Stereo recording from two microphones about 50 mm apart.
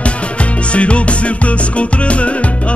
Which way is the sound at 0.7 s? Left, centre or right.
Left.